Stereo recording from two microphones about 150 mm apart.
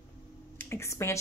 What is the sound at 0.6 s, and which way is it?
Speech, 20° left (ahead or behind).